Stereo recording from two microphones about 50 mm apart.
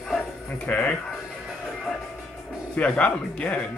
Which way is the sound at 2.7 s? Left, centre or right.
Left.